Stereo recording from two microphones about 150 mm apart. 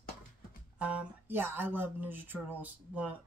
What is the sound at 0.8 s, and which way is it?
Speech, 15° right (ahead or behind).